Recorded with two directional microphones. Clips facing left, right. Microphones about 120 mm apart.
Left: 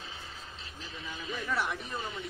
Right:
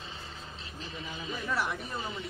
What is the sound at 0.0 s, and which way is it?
Speech, centre (ahead or behind).